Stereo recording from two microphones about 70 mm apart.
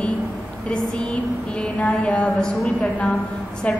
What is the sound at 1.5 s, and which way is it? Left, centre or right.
A woman's voice, centre.